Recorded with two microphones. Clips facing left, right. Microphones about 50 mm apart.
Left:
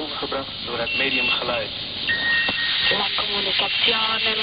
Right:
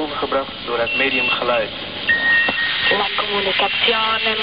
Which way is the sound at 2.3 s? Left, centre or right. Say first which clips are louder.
Right 5 dB; right.